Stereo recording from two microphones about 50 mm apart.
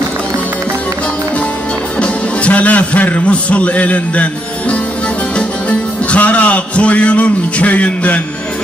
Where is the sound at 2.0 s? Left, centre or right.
Left.